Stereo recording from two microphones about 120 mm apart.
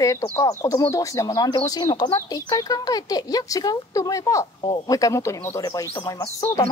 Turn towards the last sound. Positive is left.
turn(degrees=30)  # may be behind; listen again after turning